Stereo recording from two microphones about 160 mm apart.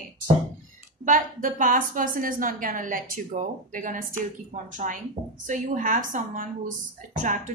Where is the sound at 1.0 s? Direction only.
55° right (ahead or behind).